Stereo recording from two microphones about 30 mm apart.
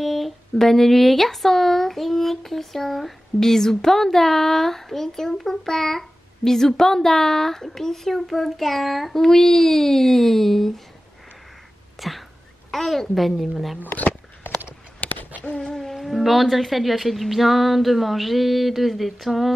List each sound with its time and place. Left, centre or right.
0.0 s speech: centre
3.3 s speech: centre
9.2 s speech: centre
12.0 s whispering: centre
12.7 s speech: centre
13.9 s a sound: left
15.0 s a sound: left
16.0 s speech: centre